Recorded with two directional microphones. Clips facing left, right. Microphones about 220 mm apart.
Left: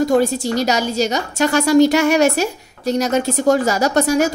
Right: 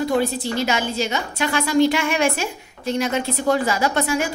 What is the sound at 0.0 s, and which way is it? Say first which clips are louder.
A woman's voice: left 5 dB; 45° left (ahead or behind).